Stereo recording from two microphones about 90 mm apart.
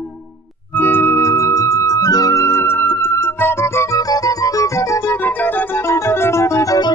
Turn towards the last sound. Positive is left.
turn(degrees=35)  # may be behind; listen again after turning